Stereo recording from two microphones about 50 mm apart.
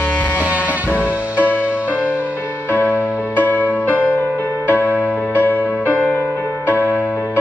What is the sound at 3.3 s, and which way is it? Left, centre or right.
Music, left.